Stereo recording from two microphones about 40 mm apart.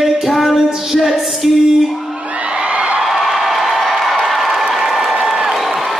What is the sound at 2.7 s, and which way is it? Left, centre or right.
Music, right.